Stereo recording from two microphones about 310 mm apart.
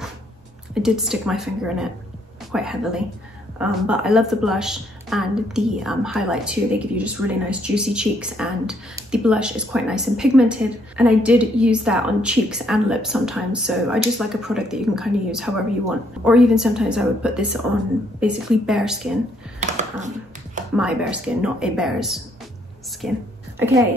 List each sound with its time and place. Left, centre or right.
0.8 s a woman's voice: centre
19.6 s a sound: right
20.7 s a woman's voice: centre